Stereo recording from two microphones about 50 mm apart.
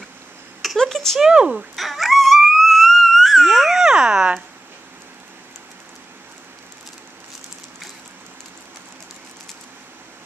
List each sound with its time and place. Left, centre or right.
0.7 s speech: centre
1.2 s speech: centre
1.8 s dog: centre